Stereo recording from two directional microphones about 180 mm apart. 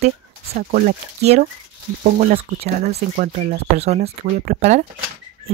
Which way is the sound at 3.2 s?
50° right (ahead or behind).